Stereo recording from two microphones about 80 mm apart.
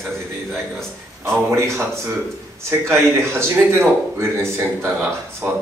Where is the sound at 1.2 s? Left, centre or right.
Right.